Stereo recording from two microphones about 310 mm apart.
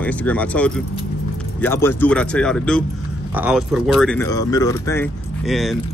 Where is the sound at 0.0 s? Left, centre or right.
Centre.